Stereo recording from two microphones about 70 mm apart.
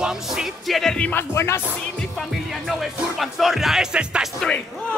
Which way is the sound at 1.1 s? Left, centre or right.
Left.